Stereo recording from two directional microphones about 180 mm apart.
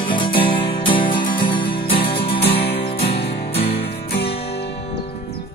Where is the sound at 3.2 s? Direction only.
60° left (ahead or behind).